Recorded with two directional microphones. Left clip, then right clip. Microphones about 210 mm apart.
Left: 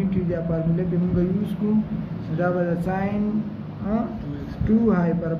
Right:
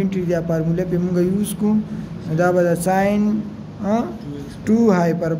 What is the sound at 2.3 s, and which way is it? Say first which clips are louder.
Speech: right 7 dB; 55° right (ahead or behind).